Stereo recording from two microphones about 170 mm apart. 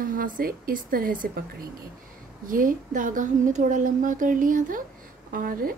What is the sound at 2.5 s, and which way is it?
A woman's voice, 55° right (ahead or behind).